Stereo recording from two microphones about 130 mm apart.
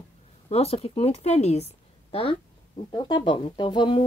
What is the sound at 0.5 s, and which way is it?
Speech, 55° left (ahead or behind).